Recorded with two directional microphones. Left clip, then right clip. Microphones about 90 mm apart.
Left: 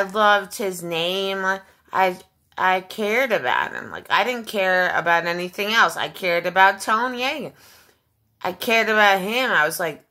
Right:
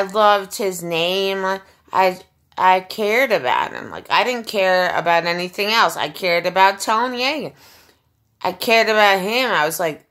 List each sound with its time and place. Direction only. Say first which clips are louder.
0.0 s a woman's voice: right 2 dB; 25° right (ahead or behind)